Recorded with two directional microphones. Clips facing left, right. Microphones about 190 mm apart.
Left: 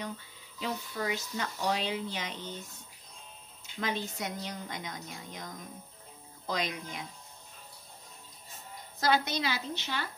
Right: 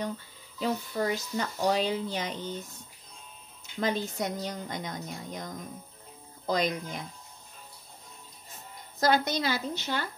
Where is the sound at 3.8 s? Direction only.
40° right (ahead or behind).